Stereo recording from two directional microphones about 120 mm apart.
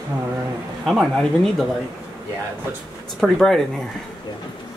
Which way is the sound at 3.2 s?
Centre (ahead or behind).